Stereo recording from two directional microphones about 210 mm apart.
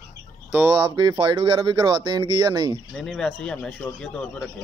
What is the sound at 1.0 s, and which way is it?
Speech, 20° right (ahead or behind).